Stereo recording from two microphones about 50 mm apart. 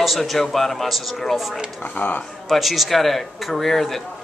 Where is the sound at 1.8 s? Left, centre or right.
Left.